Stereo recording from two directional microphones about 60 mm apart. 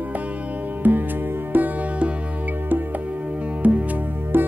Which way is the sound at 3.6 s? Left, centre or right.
Right.